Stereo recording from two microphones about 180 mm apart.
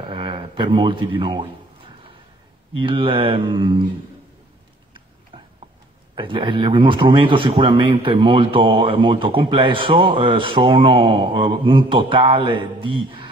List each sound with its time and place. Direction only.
0.1 s speech: 25° right (ahead or behind)
2.8 s a man's voice: 30° right (ahead or behind)
5.3 s a sound: 30° right (ahead or behind)
6.1 s a man's voice: 30° right (ahead or behind)